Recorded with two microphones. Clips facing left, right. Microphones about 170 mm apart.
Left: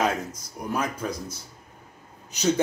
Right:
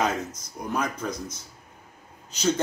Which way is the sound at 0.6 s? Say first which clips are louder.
Even; 5° left (ahead or behind).